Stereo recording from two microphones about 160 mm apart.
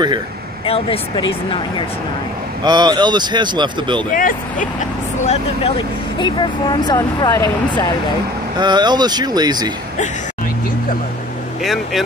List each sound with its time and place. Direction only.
0.7 s speech: 35° left (ahead or behind)
2.6 s speech: 25° right (ahead or behind)
4.1 s speech: 60° left (ahead or behind)
5.8 s speech: 30° left (ahead or behind)
8.5 s speech: 25° right (ahead or behind)
11.6 s speech: centre (ahead or behind)